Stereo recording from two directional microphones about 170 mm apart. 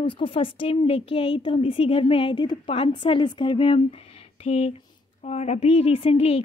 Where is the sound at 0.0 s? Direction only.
30° left (ahead or behind).